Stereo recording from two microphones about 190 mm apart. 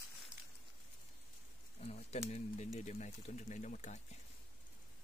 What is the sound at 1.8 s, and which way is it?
Speech, 35° left (ahead or behind).